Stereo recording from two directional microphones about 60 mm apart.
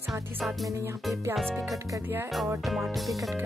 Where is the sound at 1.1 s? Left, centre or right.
Right.